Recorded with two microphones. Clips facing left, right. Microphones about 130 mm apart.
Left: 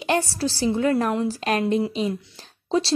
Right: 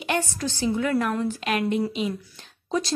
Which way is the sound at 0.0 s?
35° left (ahead or behind).